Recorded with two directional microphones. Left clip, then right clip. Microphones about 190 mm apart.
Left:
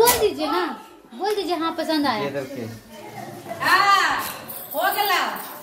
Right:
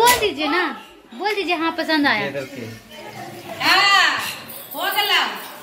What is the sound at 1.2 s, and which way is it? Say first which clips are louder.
Speech: right 2 dB; 30° right (ahead or behind).